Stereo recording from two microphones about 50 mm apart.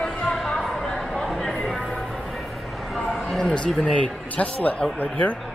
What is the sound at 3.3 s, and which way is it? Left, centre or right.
Bow-wow, centre.